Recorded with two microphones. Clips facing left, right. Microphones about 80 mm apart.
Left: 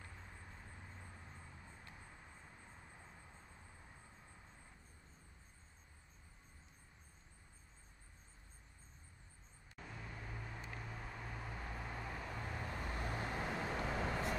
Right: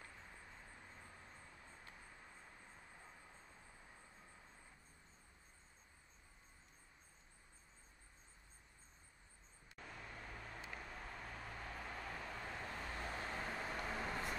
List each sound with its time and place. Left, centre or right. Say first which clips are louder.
0.1 s vehicle: left 1 dB; centre
9.8 s vehicle: left 2 dB; centre